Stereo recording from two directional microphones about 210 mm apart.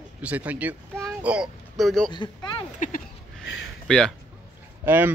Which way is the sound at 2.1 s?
20° left (ahead or behind).